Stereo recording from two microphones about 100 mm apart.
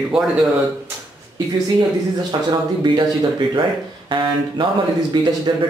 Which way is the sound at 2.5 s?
45° right (ahead or behind).